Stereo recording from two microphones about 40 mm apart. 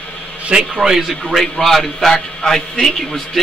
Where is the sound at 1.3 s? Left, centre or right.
Centre.